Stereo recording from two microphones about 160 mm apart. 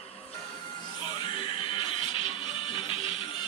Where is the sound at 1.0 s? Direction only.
30° left (ahead or behind).